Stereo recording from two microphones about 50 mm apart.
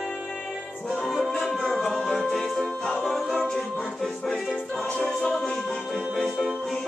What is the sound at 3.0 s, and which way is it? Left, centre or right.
A capella, centre.